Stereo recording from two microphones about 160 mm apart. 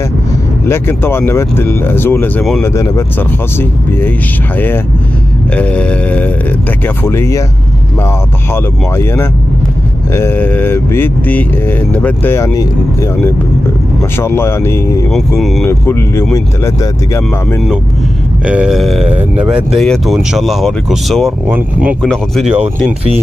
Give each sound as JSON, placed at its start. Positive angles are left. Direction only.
{"t": 0.7, "sound": "speech", "side_deg": 15}
{"t": 5.6, "sound": "speech", "side_deg": 10}
{"t": 8.9, "sound": "speech", "side_deg": 15}
{"t": 14.2, "sound": "speech", "side_deg": 15}
{"t": 15.1, "sound": "speech", "side_deg": 0}
{"t": 15.6, "sound": "speech", "side_deg": 15}
{"t": 18.4, "sound": "speech", "side_deg": -5}